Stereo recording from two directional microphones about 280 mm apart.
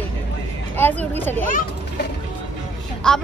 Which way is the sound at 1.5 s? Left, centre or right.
Left.